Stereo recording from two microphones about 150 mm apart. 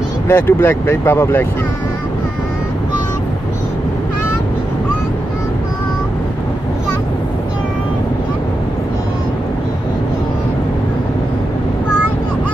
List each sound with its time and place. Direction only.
0.3 s speech: 15° left (ahead or behind)